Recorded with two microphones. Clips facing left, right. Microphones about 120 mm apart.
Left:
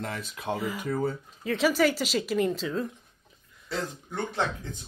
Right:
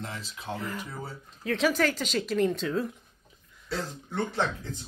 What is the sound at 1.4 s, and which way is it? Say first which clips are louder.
Speech: left 2 dB; centre (ahead or behind).